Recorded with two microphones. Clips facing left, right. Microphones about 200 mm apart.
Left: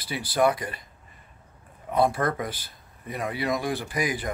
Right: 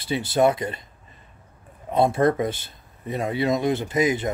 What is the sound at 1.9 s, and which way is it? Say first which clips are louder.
Speech: right 4 dB; 25° right (ahead or behind).